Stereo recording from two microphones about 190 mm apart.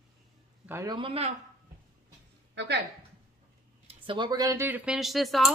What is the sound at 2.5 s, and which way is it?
Speech, 65° right (ahead or behind).